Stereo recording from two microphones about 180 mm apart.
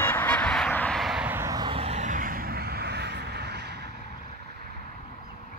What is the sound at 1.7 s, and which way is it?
Vehicle, 35° right (ahead or behind).